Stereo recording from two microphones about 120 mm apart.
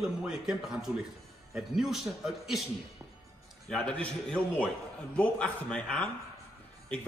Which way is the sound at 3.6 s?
10° left (ahead or behind).